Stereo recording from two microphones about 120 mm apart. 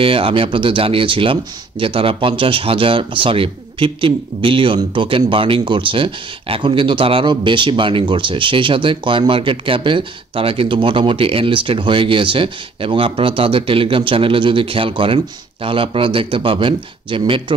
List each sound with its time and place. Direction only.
0.0 s speech: 50° right (ahead or behind)